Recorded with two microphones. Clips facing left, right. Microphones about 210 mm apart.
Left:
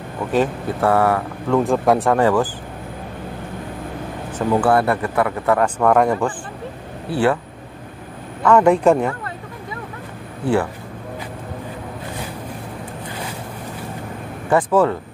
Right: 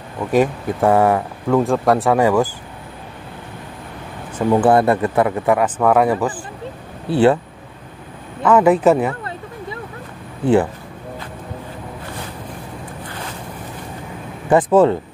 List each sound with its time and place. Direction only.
0.3 s speech: 15° right (ahead or behind)
1.5 s speech: centre (ahead or behind)
2.1 s speech: 10° right (ahead or behind)
4.4 s speech: 20° right (ahead or behind)
5.6 s speech: 5° right (ahead or behind)
7.1 s speech: 25° right (ahead or behind)
8.5 s speech: 5° right (ahead or behind)
14.5 s speech: 20° right (ahead or behind)